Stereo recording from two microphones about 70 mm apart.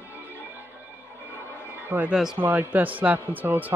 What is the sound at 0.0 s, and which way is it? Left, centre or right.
Music, right.